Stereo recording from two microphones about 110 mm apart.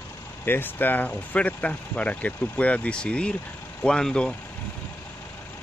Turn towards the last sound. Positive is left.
turn(degrees=5)  # may be behind; listen again after turning